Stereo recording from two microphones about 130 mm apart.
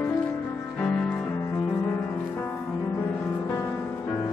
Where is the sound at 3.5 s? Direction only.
25° left (ahead or behind).